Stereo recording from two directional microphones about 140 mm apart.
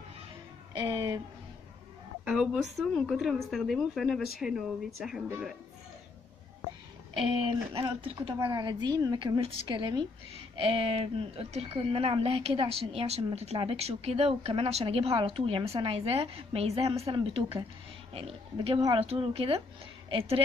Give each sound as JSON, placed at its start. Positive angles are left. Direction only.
{"t": 0.7, "sound": "a woman's voice", "side_deg": -30}
{"t": 2.2, "sound": "a woman's voice", "side_deg": -5}
{"t": 8.1, "sound": "a woman's voice", "side_deg": -35}